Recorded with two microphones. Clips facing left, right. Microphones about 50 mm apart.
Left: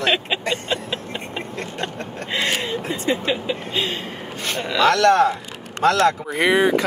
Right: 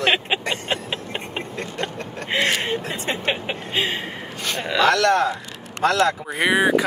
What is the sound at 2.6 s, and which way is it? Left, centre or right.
Speech, right.